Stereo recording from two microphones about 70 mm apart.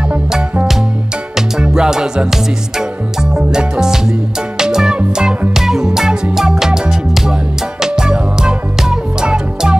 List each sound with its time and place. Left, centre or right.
1.3 s music: centre